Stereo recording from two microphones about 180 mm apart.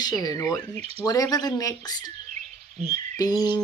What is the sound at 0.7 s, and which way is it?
Speech, 35° right (ahead or behind).